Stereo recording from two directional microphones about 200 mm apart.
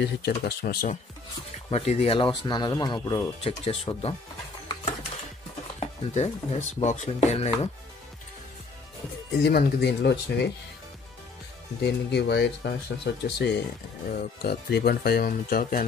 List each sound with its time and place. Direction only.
0.0 s speech: 55° left (ahead or behind)
1.7 s speech: 30° left (ahead or behind)
5.8 s speech: 35° left (ahead or behind)
9.4 s speech: 55° left (ahead or behind)
11.8 s speech: 60° left (ahead or behind)